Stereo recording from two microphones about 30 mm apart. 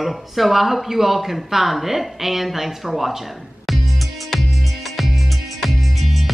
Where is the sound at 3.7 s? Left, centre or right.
Centre.